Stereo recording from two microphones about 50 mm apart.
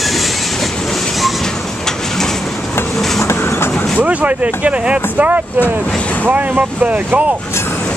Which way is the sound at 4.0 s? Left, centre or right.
Right.